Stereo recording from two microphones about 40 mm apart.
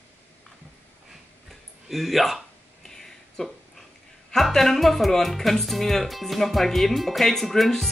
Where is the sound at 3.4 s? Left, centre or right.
Centre.